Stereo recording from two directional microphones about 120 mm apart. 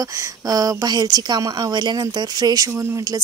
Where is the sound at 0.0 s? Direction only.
30° right (ahead or behind).